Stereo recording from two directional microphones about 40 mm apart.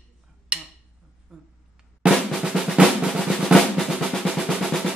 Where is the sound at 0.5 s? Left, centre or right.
Right.